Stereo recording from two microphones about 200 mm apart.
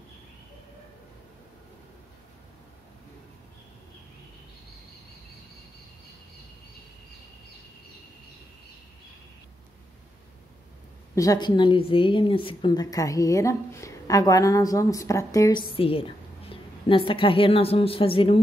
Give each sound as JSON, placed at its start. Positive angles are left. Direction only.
{"t": 11.1, "sound": "a woman's voice", "side_deg": 20}
{"t": 15.7, "sound": "a woman's voice", "side_deg": 25}